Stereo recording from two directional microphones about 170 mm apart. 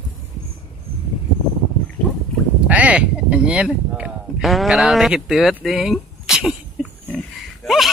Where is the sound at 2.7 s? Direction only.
10° right (ahead or behind).